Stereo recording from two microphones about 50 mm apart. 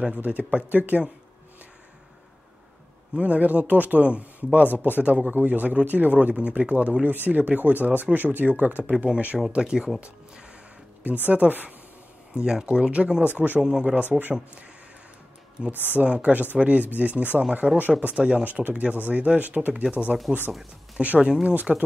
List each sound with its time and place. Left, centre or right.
0.2 s speech: right
3.2 s speech: right
9.6 s speech: centre
11.2 s speech: right
12.4 s speech: centre; by 13.6 s right
13.6 s speech: centre
16.0 s speech: right
18.4 s speech: right
21.2 s speech: centre
21.5 s speech: right